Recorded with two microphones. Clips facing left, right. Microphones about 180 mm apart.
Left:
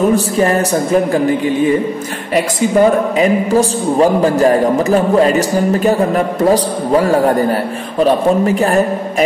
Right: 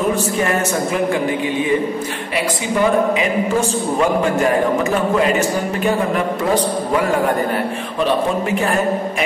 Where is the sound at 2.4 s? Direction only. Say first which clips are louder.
Left 7 dB; 40° left (ahead or behind).